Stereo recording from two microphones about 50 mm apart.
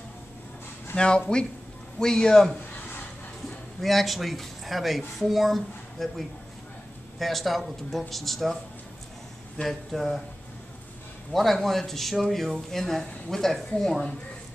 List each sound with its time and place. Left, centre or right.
0.9 s a man's voice: centre
3.4 s speech: centre
9.7 s speech: centre
11.3 s speech: centre